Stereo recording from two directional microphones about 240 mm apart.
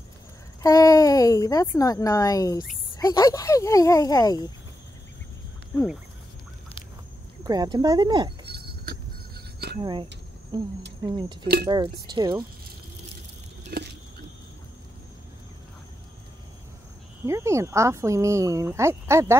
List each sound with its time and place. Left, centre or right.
0.6 s a woman's voice: centre
7.4 s speech: centre
8.5 s a sound: right
9.8 s speech: centre
13.7 s vehicle: right
17.3 s speech: centre